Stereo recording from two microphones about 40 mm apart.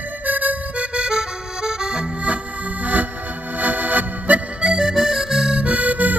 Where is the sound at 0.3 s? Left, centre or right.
Right.